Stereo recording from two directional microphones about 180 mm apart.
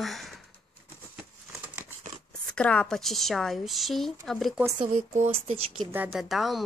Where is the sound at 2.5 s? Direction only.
5° left (ahead or behind).